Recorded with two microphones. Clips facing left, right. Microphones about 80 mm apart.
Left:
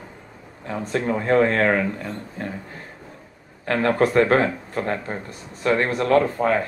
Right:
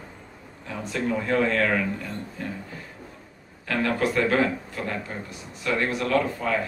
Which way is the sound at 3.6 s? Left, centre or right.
Left.